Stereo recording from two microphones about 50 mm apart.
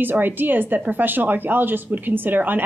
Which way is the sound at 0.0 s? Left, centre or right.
Right.